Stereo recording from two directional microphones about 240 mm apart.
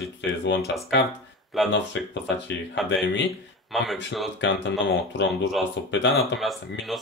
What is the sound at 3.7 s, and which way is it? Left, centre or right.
Speech, centre.